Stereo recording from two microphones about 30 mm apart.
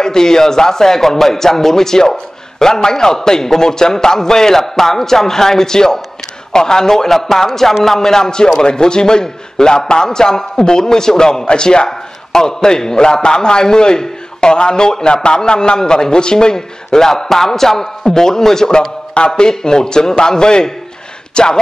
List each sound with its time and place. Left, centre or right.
0.0 s a man's voice: left
19.1 s a man's voice: left